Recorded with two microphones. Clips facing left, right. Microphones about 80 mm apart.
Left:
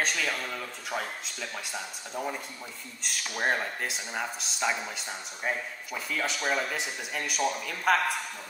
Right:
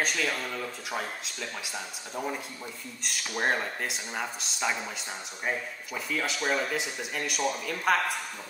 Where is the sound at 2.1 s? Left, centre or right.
Centre.